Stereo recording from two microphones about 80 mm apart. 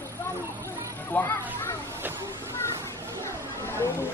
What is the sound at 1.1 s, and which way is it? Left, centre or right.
Speech, centre.